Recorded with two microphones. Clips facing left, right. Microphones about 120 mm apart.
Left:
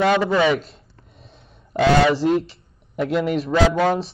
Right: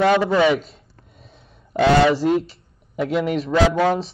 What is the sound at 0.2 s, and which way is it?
Speech, 15° right (ahead or behind).